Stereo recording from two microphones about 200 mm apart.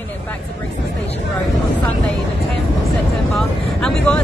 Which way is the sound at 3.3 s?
5° left (ahead or behind).